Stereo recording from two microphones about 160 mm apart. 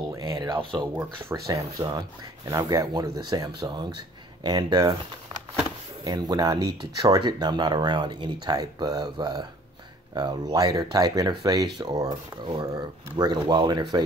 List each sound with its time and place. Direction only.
0.1 s speech: 25° right (ahead or behind)
6.0 s speech: 25° right (ahead or behind)
13.2 s speech: 25° right (ahead or behind)